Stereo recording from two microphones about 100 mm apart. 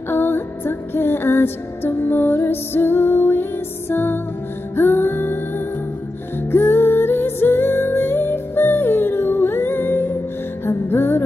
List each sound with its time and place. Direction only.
0.1 s music: 20° left (ahead or behind)
6.5 s music: 20° left (ahead or behind)